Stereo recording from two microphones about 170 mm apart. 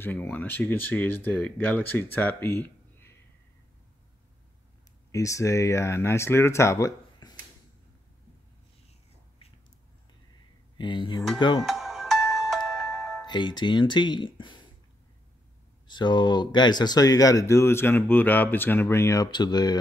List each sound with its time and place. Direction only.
0.0 s speech: 10° left (ahead or behind)
5.1 s speech: 20° left (ahead or behind)
10.8 s speech: 25° left (ahead or behind)
11.6 s music: centre (ahead or behind)
13.3 s speech: 25° left (ahead or behind)
15.9 s speech: 25° left (ahead or behind)